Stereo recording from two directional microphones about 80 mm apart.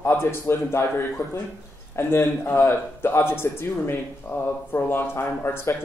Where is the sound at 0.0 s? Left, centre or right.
Left.